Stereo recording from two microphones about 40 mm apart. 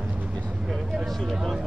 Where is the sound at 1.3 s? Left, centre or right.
Centre.